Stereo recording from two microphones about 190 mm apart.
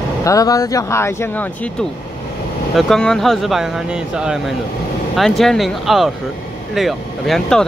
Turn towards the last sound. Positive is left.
turn(degrees=0)  # may be behind; listen again after turning